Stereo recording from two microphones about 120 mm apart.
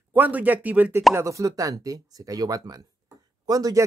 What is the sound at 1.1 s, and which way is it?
Speech, 25° right (ahead or behind).